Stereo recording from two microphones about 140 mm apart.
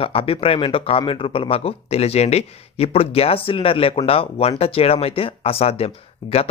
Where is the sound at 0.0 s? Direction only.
40° left (ahead or behind).